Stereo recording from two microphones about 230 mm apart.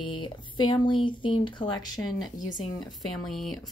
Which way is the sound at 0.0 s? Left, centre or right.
Left.